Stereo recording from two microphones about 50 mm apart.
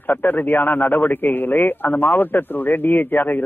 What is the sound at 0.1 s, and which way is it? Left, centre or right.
Speech, left.